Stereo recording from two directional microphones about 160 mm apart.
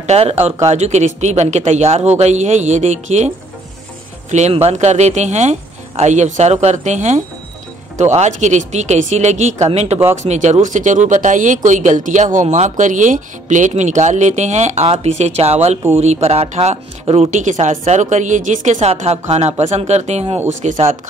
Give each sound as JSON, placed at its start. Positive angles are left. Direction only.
{"t": 0.0, "sound": "speech", "side_deg": -40}
{"t": 4.3, "sound": "speech", "side_deg": -45}